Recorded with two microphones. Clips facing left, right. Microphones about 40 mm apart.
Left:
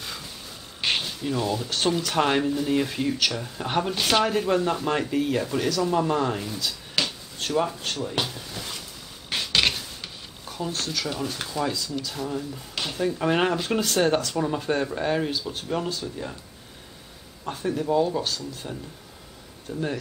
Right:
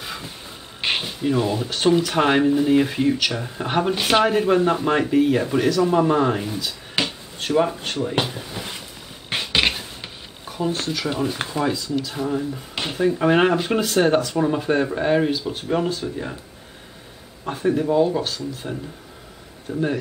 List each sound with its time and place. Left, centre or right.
0.0 s a sound: centre
0.7 s speech: centre
9.3 s a sound: right
11.4 s speech: right
17.5 s speech: centre
19.7 s speech: right